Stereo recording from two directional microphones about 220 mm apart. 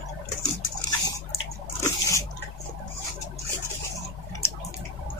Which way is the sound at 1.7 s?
10° left (ahead or behind).